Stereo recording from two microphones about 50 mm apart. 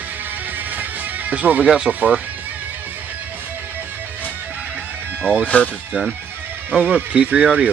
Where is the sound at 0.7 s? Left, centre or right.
Right.